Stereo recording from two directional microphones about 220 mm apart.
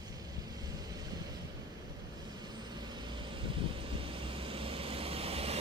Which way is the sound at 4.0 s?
25° right (ahead or behind).